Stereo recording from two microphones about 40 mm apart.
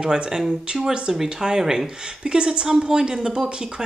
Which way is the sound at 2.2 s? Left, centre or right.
Right.